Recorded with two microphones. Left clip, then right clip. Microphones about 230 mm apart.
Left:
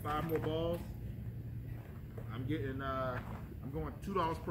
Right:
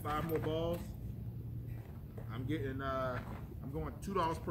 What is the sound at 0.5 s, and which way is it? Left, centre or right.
Speech, centre.